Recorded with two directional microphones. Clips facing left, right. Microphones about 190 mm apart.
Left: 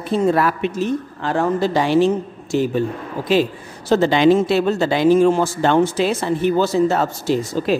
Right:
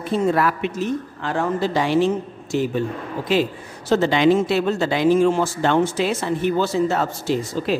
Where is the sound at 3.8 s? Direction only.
35° left (ahead or behind).